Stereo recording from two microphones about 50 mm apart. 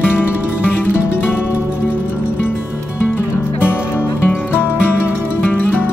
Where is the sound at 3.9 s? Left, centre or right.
Left.